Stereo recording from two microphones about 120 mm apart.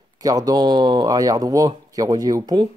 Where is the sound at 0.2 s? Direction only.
30° right (ahead or behind).